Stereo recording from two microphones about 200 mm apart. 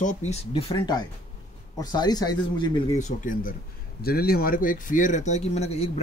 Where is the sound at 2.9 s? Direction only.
35° left (ahead or behind).